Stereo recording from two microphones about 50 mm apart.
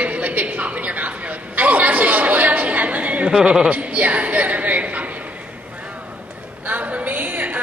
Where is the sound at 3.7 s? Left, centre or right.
Right.